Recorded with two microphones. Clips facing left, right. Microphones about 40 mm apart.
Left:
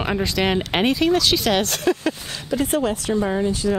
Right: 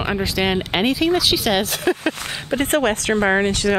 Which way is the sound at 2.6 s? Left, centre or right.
Right.